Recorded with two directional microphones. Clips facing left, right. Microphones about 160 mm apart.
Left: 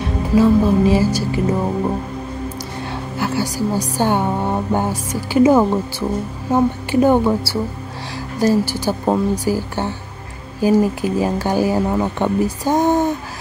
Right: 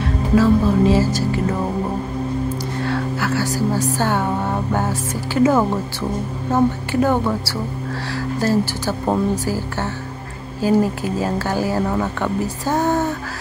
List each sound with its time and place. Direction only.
0.0 s speech: 15° left (ahead or behind)
2.9 s a woman's voice: 15° left (ahead or behind)